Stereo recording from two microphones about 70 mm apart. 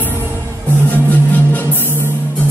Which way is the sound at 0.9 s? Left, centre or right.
Left.